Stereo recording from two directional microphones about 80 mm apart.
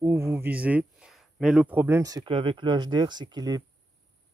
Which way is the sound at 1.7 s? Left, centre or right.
Right.